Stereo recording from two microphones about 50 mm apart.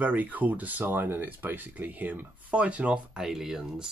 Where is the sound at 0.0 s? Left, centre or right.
Right.